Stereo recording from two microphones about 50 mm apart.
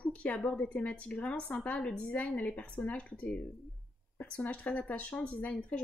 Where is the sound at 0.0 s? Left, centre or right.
Left.